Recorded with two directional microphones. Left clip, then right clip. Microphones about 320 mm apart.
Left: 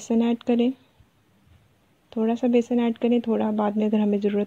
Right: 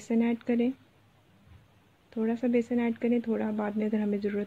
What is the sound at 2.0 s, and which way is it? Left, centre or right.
Speech, centre.